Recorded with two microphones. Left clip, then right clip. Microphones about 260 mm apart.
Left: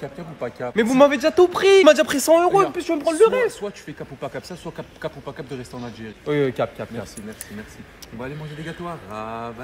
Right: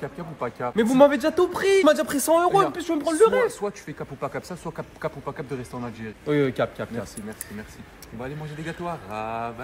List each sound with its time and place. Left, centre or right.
0.0 s speech: centre
0.7 s speech: centre
3.8 s speech: centre
6.2 s a man's voice: centre
8.2 s a man's voice: centre